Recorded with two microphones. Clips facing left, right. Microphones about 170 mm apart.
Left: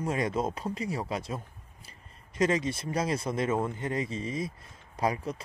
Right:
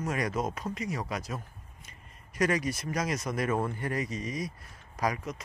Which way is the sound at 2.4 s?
25° left (ahead or behind).